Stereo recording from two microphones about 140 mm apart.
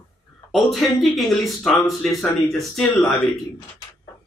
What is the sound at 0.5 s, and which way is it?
A man's voice, centre (ahead or behind).